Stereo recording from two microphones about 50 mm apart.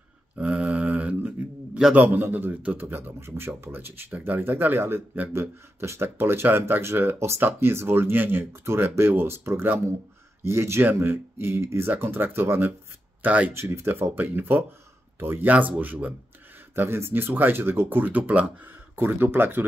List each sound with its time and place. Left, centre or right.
0.4 s mantra: right
2.0 s speech: right
3.2 s speech: right
7.2 s speech: right
7.7 s speech: right
10.8 s speech: right
13.2 s speech: right
13.5 s speech: right
15.4 s speech: right
16.7 s speech: right
18.9 s speech: right